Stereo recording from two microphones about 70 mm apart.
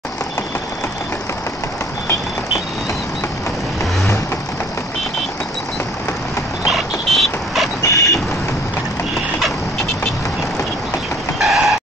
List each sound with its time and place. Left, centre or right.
6.6 s vehicle: centre
7.8 s vehicle: left
9.1 s a sound: centre
11.3 s chicken: centre